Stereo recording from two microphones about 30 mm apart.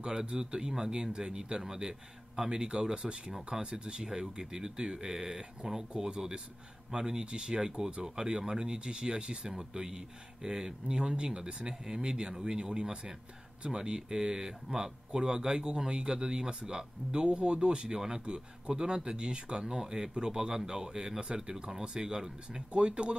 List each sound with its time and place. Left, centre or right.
0.0 s speech: right
3.5 s speech: centre
7.2 s speech: right
8.0 s speech: right
22.7 s speech: right